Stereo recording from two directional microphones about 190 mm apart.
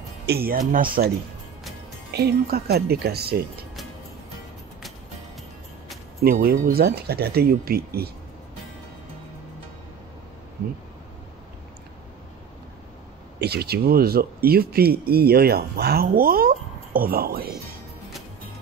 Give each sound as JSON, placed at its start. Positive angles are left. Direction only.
{"t": 0.3, "sound": "speech", "side_deg": -50}
{"t": 2.1, "sound": "speech", "side_deg": -55}
{"t": 6.2, "sound": "speech", "side_deg": -50}
{"t": 13.4, "sound": "speech", "side_deg": -55}